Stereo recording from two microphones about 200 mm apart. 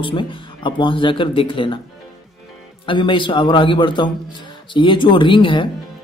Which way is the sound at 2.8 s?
25° left (ahead or behind).